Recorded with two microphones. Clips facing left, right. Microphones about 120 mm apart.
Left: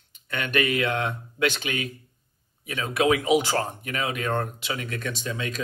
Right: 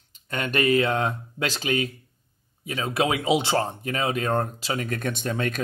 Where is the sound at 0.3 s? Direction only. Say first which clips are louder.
Right 3 dB; 35° right (ahead or behind).